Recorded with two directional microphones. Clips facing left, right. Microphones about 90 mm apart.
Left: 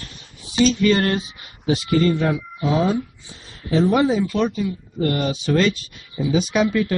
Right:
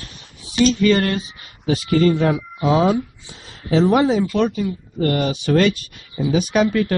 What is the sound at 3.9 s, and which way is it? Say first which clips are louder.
Speech: right 2 dB; 55° right (ahead or behind).